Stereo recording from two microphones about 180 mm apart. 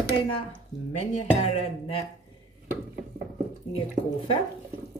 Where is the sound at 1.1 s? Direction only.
35° left (ahead or behind).